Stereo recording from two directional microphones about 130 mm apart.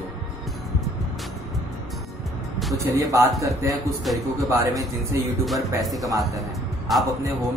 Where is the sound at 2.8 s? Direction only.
25° right (ahead or behind).